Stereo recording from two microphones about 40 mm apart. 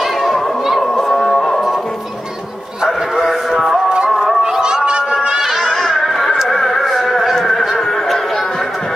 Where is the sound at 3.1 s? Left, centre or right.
Centre.